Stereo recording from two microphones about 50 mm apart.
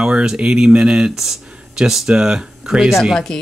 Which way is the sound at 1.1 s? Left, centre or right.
Centre.